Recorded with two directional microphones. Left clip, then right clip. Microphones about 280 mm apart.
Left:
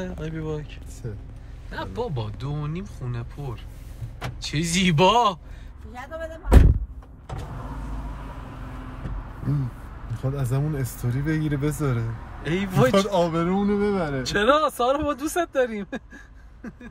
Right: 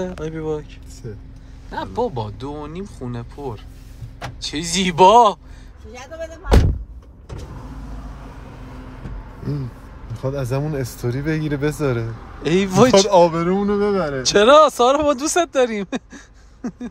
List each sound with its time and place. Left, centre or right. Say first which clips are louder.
0.2 s speech: right 7 dB; right
1.7 s speech: right 7 dB; centre
10.3 s speech: right 6 dB; right